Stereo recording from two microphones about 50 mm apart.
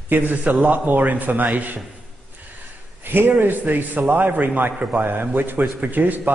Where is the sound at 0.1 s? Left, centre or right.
Right.